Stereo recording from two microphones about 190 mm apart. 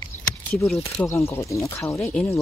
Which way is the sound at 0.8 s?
15° left (ahead or behind).